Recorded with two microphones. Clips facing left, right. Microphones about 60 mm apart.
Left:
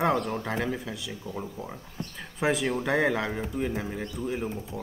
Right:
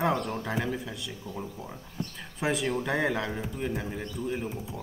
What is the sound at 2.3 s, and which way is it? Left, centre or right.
Speech, centre.